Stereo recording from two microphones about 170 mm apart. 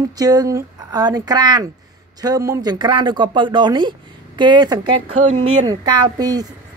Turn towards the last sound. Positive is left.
turn(degrees=-20)  # may be behind; listen again after turning